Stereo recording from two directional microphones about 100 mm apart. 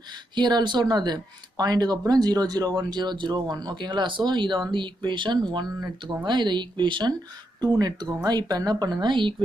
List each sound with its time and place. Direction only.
0.3 s speech: 50° right (ahead or behind)